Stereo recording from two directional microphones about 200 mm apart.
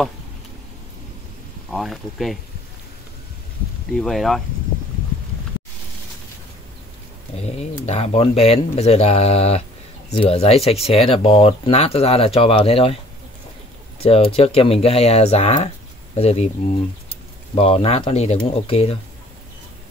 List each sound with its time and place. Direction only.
1.7 s speech: centre (ahead or behind)
3.9 s speech: centre (ahead or behind)
7.3 s speech: 35° left (ahead or behind)
13.9 s speech: 30° left (ahead or behind)
17.6 s speech: 30° left (ahead or behind)